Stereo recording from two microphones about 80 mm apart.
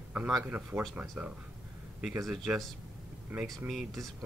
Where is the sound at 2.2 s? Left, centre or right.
Centre.